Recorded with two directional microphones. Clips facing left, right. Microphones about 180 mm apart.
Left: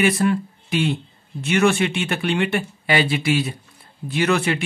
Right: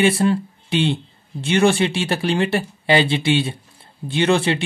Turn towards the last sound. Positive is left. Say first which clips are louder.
# right 2 dB
turn(degrees=-30)  # may be behind; listen again after turning